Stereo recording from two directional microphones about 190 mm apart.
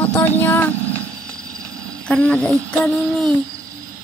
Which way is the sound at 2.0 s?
5° left (ahead or behind).